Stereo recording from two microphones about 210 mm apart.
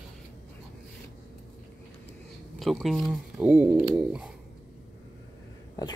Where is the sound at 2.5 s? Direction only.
Centre (ahead or behind).